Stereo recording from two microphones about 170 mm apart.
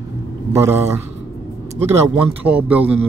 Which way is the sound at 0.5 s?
15° right (ahead or behind).